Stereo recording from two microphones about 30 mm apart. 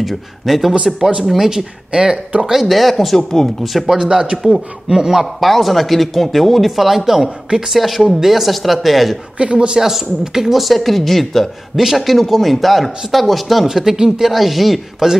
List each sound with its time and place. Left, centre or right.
0.0 s speech: centre
1.2 s a man's voice: centre
1.9 s a man's voice: right
2.5 s speech: centre
4.1 s a man's voice: right
5.2 s speech: centre
6.7 s a man's voice: centre
9.4 s a man's voice: right
9.8 s speech: centre
11.7 s a man's voice: centre
12.2 s speech: centre
13.7 s a man's voice: centre